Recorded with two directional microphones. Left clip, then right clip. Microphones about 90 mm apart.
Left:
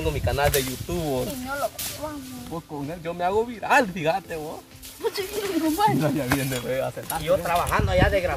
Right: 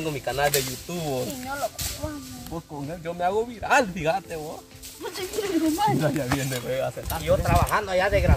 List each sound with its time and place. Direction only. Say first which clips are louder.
0.0 s speech: left 1 dB; 30° left (ahead or behind)
7.1 s speech: left 1 dB; centre (ahead or behind)